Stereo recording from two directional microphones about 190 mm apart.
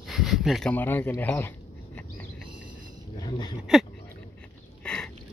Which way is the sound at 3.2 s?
20° left (ahead or behind).